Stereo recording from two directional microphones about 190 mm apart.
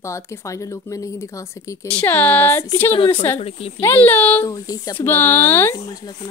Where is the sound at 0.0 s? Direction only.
15° left (ahead or behind).